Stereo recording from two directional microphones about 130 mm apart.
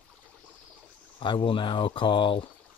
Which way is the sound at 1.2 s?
40° left (ahead or behind).